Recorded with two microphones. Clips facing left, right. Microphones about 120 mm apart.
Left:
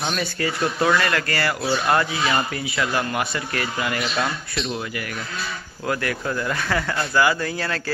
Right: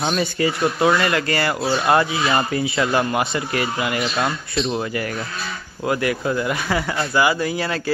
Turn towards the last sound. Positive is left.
turn(degrees=-15)  # may be behind; listen again after turning